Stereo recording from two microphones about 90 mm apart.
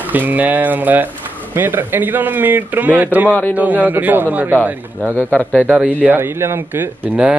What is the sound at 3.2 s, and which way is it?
Speech, 20° left (ahead or behind).